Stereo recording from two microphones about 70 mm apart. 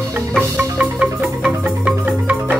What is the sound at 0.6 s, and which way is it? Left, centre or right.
Music, right.